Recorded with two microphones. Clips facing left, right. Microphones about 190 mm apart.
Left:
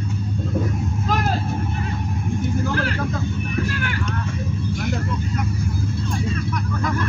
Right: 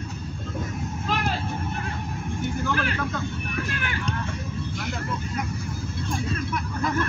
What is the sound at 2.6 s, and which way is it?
Vehicle, 35° left (ahead or behind).